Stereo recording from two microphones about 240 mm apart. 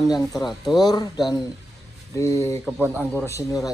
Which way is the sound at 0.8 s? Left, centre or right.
Centre.